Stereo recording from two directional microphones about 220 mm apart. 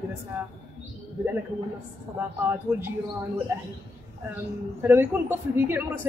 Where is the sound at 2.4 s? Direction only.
10° right (ahead or behind).